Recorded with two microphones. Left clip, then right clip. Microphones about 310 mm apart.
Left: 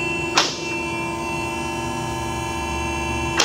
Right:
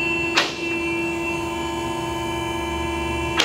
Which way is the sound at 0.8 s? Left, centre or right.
Left.